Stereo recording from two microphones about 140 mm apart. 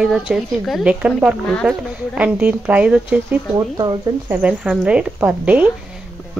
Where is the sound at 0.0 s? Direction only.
5° right (ahead or behind).